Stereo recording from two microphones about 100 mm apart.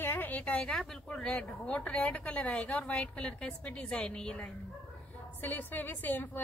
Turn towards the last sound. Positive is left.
turn(degrees=20)  # may be behind; listen again after turning